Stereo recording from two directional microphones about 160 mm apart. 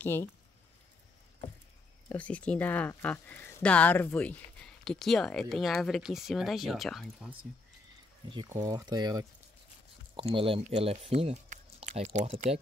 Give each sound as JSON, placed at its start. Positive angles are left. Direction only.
{"t": 0.0, "sound": "speech", "side_deg": 15}
{"t": 2.0, "sound": "speech", "side_deg": 10}
{"t": 8.5, "sound": "speech", "side_deg": -20}